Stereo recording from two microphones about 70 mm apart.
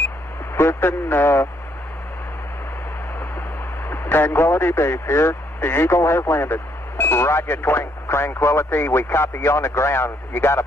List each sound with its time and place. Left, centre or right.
0.6 s speech: left
3.9 s radio: left
4.6 s speech: left